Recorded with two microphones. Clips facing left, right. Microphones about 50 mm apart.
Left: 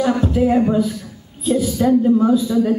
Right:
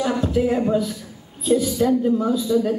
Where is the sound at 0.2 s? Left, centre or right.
Centre.